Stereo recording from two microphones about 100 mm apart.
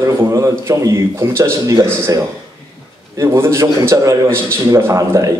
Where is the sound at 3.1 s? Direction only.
30° right (ahead or behind).